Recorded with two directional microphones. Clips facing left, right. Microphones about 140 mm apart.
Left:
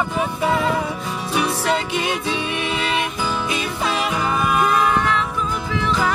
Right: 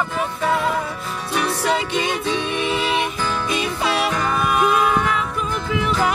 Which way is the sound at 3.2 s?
10° left (ahead or behind).